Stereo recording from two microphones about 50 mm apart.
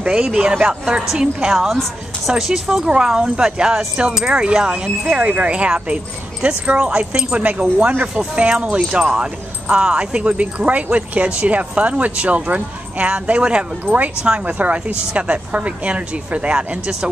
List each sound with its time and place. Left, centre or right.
0.0 s speech: centre
1.7 s a woman's voice: centre
7.8 s speech: right